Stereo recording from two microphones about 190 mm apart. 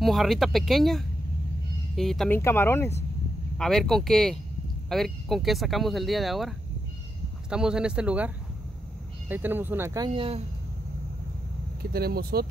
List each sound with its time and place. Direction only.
0.0 s speech: centre (ahead or behind)
9.3 s speech: 10° right (ahead or behind); by 10.4 s 30° right (ahead or behind)
11.8 s speech: 55° right (ahead or behind)